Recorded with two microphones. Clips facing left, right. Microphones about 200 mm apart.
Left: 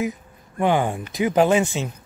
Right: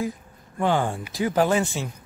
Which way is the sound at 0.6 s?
15° left (ahead or behind).